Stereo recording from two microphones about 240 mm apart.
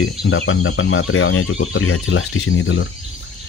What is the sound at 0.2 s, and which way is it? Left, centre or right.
Speech, left.